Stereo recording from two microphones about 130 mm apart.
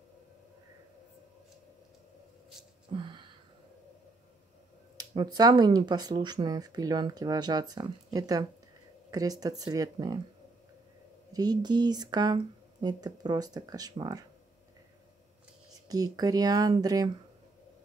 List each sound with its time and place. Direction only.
2.9 s a sound: 40° right (ahead or behind)
4.9 s speech: 30° right (ahead or behind)
11.3 s speech: 30° right (ahead or behind)
15.9 s speech: 30° right (ahead or behind)